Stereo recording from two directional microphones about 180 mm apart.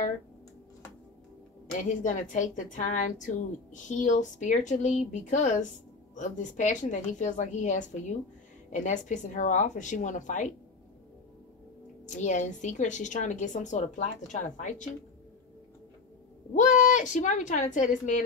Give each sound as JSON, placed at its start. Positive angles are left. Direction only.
{"t": 1.7, "sound": "a woman's voice", "side_deg": 45}
{"t": 12.1, "sound": "a woman's voice", "side_deg": 45}
{"t": 16.5, "sound": "a woman's voice", "side_deg": 45}